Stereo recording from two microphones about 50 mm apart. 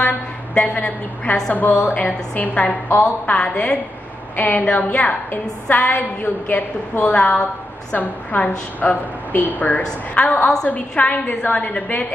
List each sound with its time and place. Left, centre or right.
1.5 s a woman's voice: left